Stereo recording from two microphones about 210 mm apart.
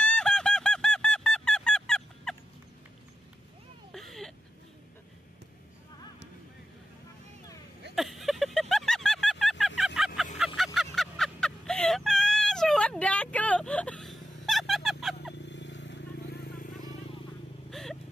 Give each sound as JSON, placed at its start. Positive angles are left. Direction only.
{"t": 0.0, "sound": "honk", "side_deg": 5}
{"t": 3.9, "sound": "a sound", "side_deg": 0}
{"t": 7.9, "sound": "vehicle", "side_deg": 0}
{"t": 10.4, "sound": "a sound", "side_deg": 0}
{"t": 15.4, "sound": "vehicle", "side_deg": 55}
{"t": 17.6, "sound": "vehicle", "side_deg": 0}